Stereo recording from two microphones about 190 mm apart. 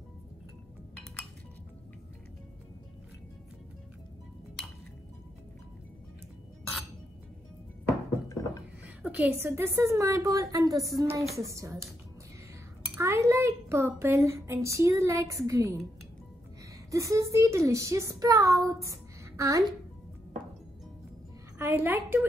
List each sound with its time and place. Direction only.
9.0 s a woman's voice: 5° right (ahead or behind)
12.9 s a child's voice: 15° right (ahead or behind)
16.9 s a woman's voice: 15° right (ahead or behind)
21.5 s a woman's voice: 10° right (ahead or behind)